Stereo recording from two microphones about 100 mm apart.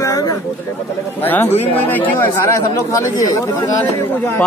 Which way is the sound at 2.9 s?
35° left (ahead or behind).